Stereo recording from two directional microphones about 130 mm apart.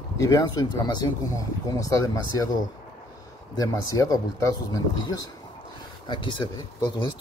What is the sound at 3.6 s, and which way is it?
Speech, 25° left (ahead or behind).